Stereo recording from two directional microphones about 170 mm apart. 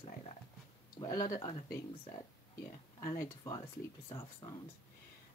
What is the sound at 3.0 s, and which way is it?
Speech, 20° left (ahead or behind).